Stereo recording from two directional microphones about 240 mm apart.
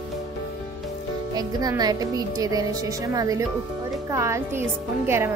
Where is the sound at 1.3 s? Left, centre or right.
Centre.